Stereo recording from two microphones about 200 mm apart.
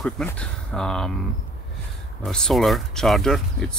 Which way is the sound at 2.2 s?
Centre (ahead or behind).